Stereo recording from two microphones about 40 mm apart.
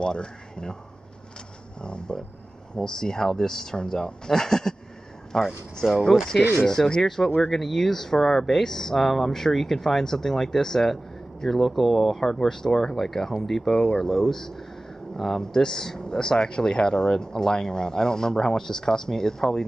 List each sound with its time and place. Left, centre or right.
0.0 s speech: left
1.8 s speech: left
5.8 s speech: centre
6.7 s speech: centre